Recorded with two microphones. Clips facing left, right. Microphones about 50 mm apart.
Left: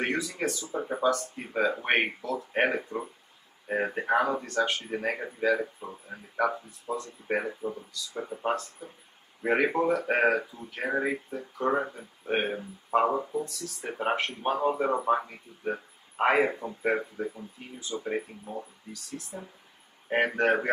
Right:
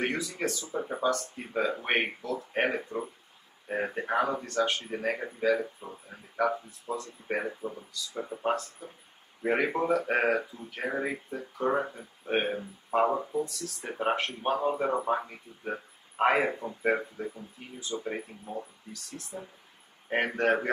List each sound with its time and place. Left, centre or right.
0.0 s speech: centre
1.5 s speech: left
1.8 s speech: centre
2.8 s speech: centre
3.6 s speech: centre
10.8 s speech: centre